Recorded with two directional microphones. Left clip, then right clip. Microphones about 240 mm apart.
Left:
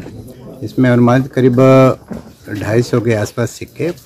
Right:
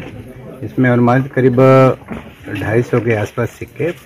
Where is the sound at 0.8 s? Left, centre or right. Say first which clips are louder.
Left 1 dB; centre.